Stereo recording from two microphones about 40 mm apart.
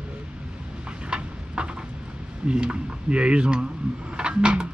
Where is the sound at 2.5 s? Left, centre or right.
Right.